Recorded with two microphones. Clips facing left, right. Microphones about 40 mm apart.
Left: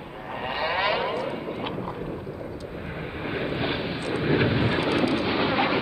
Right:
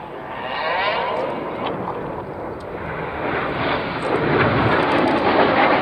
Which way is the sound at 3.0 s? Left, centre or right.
Centre.